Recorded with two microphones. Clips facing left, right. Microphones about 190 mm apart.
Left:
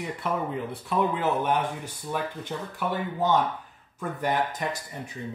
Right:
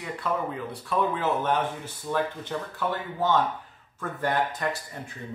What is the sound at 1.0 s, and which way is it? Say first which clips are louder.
Speech: left 1 dB; 15° left (ahead or behind).